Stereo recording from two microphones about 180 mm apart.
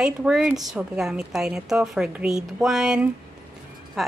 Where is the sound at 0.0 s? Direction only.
5° right (ahead or behind).